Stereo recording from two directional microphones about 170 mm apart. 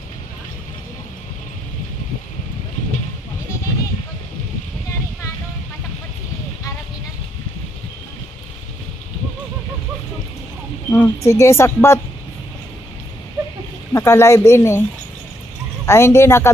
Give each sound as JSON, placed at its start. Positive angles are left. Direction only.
{"t": 10.9, "sound": "a woman's voice", "side_deg": 15}
{"t": 13.9, "sound": "speech", "side_deg": 15}
{"t": 15.8, "sound": "speech", "side_deg": 15}